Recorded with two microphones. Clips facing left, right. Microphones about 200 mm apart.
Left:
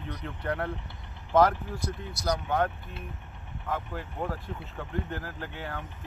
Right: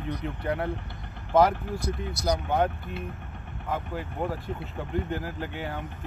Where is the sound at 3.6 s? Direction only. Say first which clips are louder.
Right 2 dB; 5° right (ahead or behind).